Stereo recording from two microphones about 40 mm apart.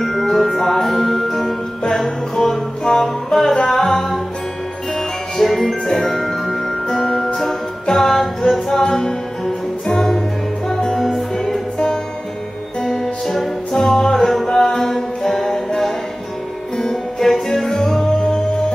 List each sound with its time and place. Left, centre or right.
0.0 s music: centre
1.8 s music: centre
12.8 s music: centre
16.7 s music: centre